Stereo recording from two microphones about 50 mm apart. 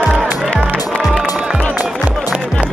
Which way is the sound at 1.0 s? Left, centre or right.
Centre.